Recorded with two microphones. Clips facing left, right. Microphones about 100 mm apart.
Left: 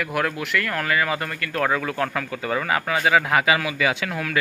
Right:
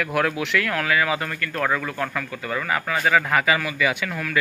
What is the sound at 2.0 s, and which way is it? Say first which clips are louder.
A man's voice: left 2 dB; 25° left (ahead or behind).